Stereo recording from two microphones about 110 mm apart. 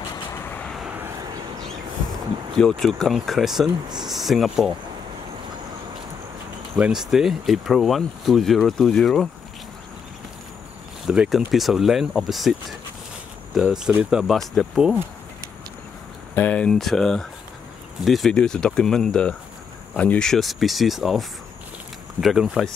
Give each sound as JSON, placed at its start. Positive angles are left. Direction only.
{"t": 0.3, "sound": "vehicle", "side_deg": 20}
{"t": 0.7, "sound": "vehicle", "side_deg": 0}
{"t": 2.5, "sound": "speech", "side_deg": 5}
{"t": 6.8, "sound": "speech", "side_deg": -5}
{"t": 11.1, "sound": "speech", "side_deg": -5}
{"t": 16.3, "sound": "speech", "side_deg": 15}